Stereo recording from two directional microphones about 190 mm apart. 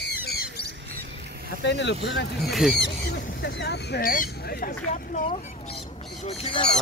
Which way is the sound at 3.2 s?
60° left (ahead or behind).